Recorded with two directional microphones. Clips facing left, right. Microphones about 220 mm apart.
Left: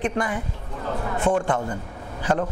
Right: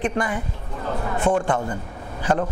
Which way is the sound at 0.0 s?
20° right (ahead or behind).